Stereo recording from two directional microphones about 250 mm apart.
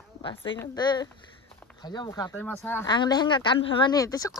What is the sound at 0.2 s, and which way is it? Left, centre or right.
A woman's voice, centre.